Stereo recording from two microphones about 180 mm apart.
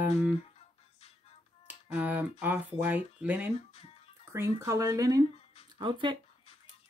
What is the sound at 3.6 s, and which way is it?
Music, 35° left (ahead or behind).